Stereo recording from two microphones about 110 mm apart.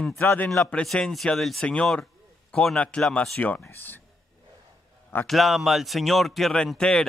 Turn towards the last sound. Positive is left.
turn(degrees=5)  # may be behind; listen again after turning